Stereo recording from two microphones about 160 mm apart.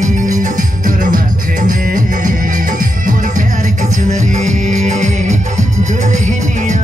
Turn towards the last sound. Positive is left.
turn(degrees=-50)  # may be behind; listen again after turning